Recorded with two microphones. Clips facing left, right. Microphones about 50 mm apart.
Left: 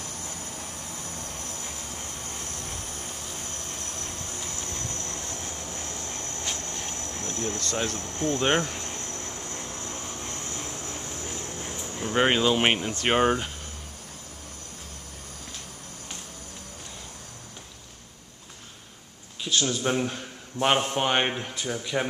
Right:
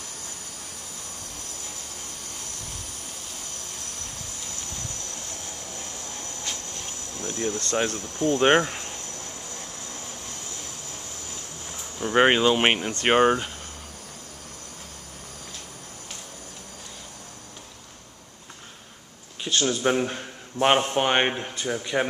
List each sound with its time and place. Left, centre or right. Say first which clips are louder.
4.7 s train: left 2 dB; left
6.5 s vehicle: left 2 dB; left
7.2 s speech: right 4 dB; right
8.0 s speech: right 3 dB; left
8.3 s speech: right 5 dB; right
9.5 s vehicle: left 2 dB; left
12.0 s speech: right 4 dB; centre
19.4 s speech: right 3 dB; centre